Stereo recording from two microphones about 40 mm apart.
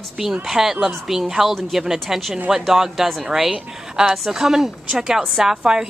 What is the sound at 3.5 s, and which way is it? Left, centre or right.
Speech, centre.